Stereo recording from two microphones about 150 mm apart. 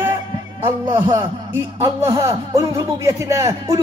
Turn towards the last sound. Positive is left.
turn(degrees=-20)  # may be behind; listen again after turning